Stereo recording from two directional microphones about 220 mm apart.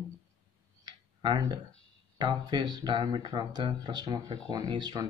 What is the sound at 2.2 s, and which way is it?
Speech, 20° right (ahead or behind).